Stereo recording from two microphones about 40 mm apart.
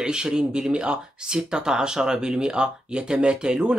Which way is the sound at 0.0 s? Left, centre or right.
Centre.